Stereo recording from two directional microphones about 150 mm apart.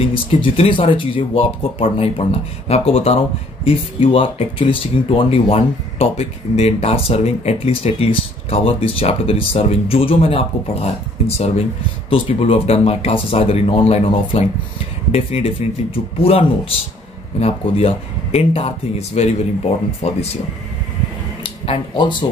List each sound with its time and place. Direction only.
0.1 s speech: 35° left (ahead or behind)
21.6 s speech: 30° left (ahead or behind)